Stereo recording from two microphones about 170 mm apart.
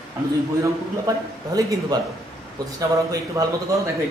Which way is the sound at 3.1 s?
20° right (ahead or behind).